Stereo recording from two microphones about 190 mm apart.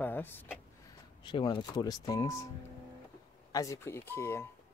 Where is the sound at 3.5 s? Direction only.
15° left (ahead or behind).